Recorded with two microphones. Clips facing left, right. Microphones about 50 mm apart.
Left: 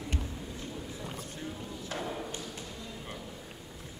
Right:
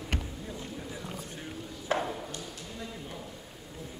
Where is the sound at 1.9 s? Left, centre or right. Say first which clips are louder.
Right 9 dB; right.